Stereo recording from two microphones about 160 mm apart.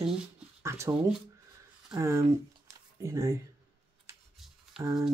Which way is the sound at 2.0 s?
20° right (ahead or behind).